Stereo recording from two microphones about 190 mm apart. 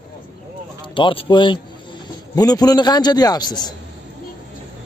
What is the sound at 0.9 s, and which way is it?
A man's voice, 25° left (ahead or behind).